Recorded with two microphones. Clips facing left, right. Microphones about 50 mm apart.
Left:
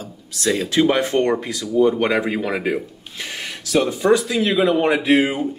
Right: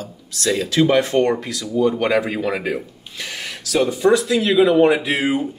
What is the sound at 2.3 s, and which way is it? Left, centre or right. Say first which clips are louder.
Speech: even; centre.